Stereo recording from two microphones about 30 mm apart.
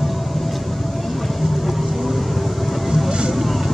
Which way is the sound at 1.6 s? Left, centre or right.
Centre.